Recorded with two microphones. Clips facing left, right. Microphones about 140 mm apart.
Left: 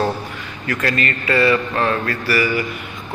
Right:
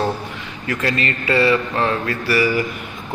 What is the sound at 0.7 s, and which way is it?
Speech, 25° right (ahead or behind).